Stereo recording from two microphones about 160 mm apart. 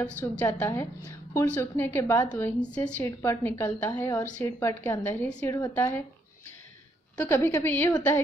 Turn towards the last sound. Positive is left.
turn(degrees=15)  # may be behind; listen again after turning